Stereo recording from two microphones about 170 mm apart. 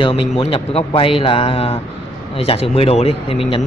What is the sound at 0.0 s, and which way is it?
Speech, 30° left (ahead or behind).